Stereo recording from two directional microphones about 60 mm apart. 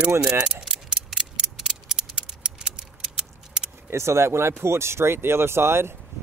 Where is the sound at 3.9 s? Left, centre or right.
Right.